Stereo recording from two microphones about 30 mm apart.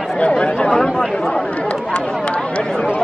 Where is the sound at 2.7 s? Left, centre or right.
Left.